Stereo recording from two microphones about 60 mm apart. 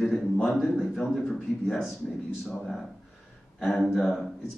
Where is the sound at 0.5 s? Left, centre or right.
Centre.